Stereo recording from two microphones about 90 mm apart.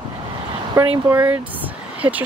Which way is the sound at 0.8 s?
30° right (ahead or behind).